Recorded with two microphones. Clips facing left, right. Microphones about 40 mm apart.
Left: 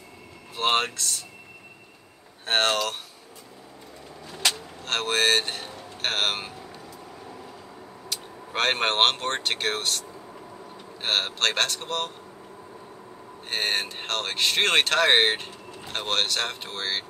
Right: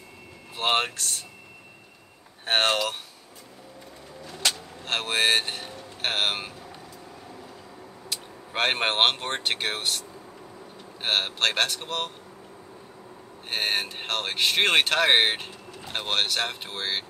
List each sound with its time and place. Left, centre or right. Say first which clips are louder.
0.6 s speech: left 1 dB; centre
0.9 s speech: left 1 dB; centre
2.4 s speech: even; centre
4.3 s vehicle: left 1 dB; left
4.8 s speech: left 1 dB; centre
8.1 s speech: left 1 dB; centre
13.5 s speech: even; centre